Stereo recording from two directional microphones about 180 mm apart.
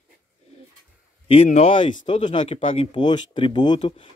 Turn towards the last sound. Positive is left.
turn(degrees=25)  # may be behind; listen again after turning